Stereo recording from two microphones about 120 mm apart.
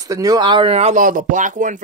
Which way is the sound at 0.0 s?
30° right (ahead or behind).